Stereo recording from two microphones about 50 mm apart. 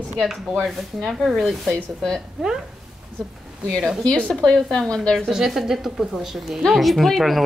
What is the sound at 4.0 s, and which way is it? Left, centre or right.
Speech, centre.